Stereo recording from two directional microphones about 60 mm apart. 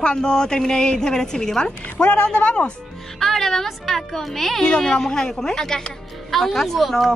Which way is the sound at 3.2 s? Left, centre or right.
Centre.